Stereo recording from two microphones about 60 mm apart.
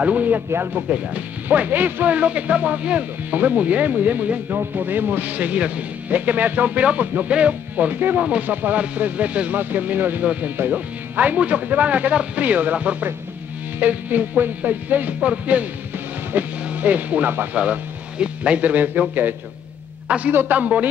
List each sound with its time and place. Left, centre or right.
0.0 s speech: right
18.2 s a man's voice: right